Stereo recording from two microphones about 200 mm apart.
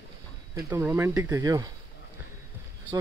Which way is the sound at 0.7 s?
10° right (ahead or behind).